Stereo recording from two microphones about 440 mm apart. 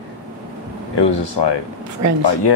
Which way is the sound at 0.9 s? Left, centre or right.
Left.